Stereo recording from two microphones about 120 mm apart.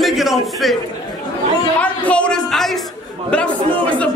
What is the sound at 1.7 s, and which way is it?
Speech, 10° left (ahead or behind).